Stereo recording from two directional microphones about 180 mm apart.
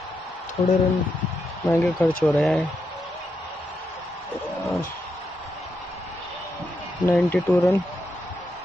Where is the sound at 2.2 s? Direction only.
5° left (ahead or behind).